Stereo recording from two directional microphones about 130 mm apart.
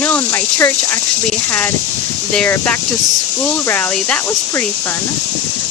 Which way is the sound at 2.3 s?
15° left (ahead or behind).